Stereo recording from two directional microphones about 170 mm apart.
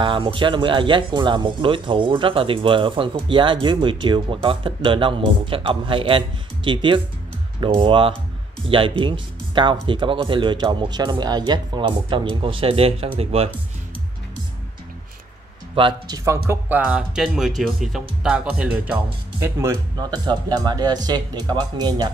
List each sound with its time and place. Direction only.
0.0 s speech: 30° right (ahead or behind)
15.7 s speech: 30° right (ahead or behind)
16.4 s speech: 10° right (ahead or behind)
19.4 s speech: 20° right (ahead or behind)